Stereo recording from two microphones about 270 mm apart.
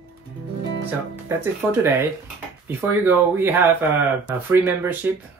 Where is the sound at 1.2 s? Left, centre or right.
Centre.